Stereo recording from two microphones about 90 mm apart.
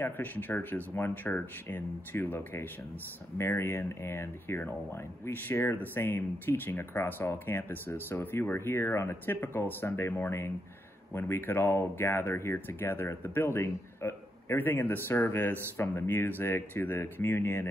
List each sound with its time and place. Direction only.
0.0 s speech: 20° left (ahead or behind)